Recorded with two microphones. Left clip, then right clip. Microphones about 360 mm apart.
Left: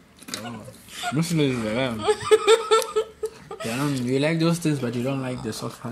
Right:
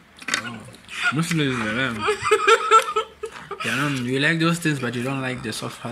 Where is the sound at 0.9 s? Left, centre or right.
Centre.